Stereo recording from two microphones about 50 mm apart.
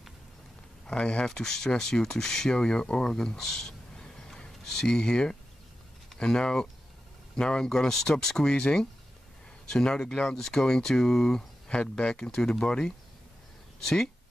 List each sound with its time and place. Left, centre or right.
0.8 s speech: left
1.2 s speech: centre